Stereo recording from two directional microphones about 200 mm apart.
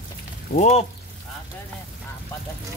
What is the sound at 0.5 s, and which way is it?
Speech, 35° left (ahead or behind).